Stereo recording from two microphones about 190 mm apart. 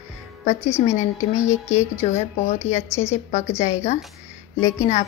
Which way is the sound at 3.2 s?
35° left (ahead or behind).